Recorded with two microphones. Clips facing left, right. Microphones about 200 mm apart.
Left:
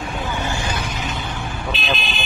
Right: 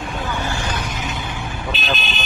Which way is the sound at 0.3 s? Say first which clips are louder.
Even; 15° left (ahead or behind).